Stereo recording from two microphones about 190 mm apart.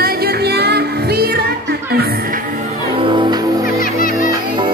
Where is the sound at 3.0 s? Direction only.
25° right (ahead or behind).